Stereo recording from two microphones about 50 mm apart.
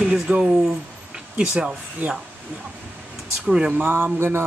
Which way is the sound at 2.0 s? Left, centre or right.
Right.